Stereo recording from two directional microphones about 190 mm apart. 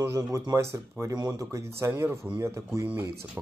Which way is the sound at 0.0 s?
15° right (ahead or behind).